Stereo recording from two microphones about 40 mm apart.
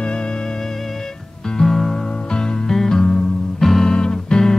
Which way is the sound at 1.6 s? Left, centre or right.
Centre.